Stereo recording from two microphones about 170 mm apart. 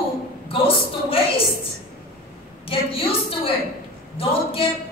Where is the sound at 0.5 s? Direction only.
30° left (ahead or behind).